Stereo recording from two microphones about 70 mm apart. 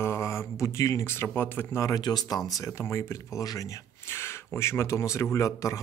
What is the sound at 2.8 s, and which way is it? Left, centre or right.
Speech, left.